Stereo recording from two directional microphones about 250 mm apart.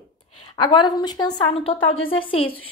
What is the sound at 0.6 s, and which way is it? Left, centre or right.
A woman's voice, centre.